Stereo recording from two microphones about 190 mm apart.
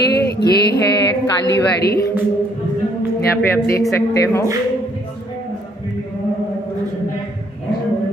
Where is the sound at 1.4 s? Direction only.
65° left (ahead or behind).